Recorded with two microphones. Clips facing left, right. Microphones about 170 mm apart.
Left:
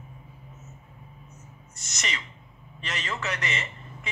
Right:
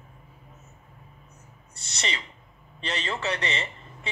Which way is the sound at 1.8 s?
30° right (ahead or behind).